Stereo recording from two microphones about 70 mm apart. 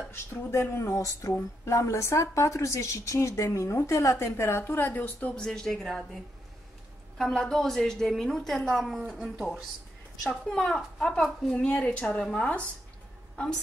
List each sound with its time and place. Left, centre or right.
0.1 s a woman's voice: left
5.3 s a woman's voice: centre
10.2 s a woman's voice: centre